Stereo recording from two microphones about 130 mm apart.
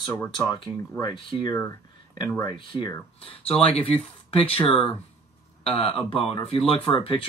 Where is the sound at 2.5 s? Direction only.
40° left (ahead or behind).